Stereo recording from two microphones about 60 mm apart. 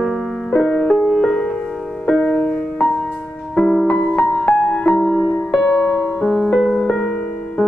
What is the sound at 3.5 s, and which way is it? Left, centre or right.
Music, centre.